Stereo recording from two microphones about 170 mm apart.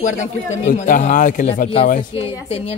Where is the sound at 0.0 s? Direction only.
45° left (ahead or behind).